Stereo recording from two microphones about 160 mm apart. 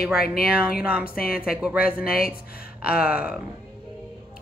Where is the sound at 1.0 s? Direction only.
70° left (ahead or behind).